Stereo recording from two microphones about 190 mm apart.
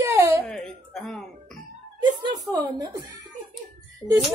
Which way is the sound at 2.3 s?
20° right (ahead or behind).